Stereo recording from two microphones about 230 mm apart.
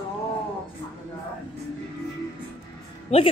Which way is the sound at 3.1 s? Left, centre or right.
Left.